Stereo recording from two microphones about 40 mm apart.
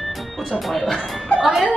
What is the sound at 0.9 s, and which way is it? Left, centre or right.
Music, left.